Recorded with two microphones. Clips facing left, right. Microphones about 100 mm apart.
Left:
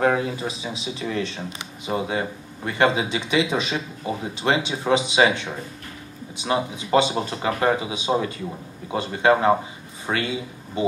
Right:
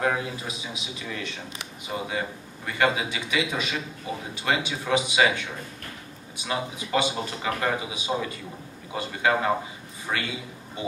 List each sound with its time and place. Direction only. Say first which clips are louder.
0.0 s speech: left 6 dB; 35° left (ahead or behind)